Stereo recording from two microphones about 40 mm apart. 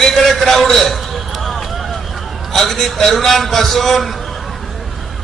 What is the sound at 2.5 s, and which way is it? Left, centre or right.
A man's voice, centre.